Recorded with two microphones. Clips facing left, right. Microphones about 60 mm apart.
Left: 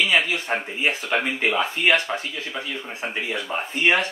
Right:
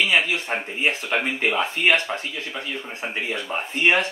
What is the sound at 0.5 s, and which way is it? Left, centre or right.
A man's voice, centre.